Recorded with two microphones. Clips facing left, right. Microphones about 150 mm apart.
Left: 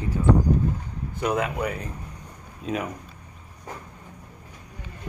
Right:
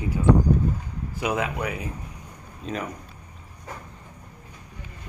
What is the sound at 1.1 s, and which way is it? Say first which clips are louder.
Speech: left 1 dB; 5° right (ahead or behind).